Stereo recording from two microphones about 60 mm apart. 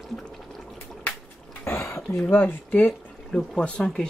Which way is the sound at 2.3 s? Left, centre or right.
Left.